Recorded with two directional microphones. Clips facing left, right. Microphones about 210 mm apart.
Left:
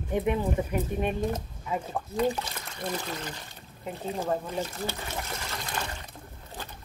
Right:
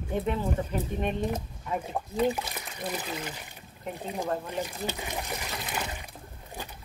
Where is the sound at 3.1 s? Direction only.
10° right (ahead or behind).